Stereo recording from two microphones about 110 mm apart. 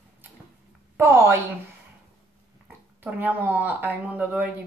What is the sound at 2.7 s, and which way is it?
Speech, 15° right (ahead or behind).